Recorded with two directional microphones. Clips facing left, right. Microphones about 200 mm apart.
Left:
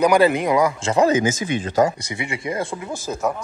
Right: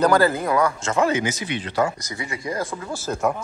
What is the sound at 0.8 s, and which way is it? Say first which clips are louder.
Speech: left 4 dB; 35° left (ahead or behind).